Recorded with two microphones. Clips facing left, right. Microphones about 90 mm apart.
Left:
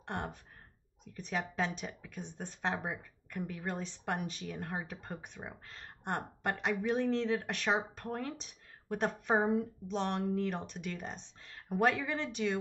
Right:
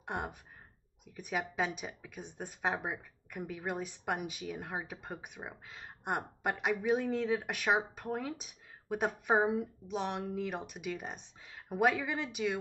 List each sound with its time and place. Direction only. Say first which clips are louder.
0.0 s speech: right 1 dB; 10° right (ahead or behind)